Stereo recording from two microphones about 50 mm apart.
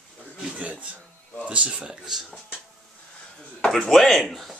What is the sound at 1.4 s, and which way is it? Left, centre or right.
Speech, right.